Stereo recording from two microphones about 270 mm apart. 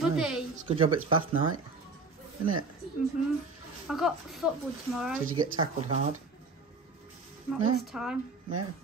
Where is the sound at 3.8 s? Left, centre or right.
Centre.